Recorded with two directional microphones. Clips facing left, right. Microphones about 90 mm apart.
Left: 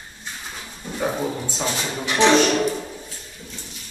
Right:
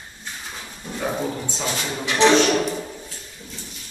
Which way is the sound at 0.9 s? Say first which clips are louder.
Left 1 dB; 5° left (ahead or behind).